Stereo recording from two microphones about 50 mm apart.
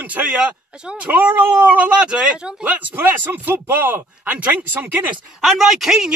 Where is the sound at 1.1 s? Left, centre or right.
Right.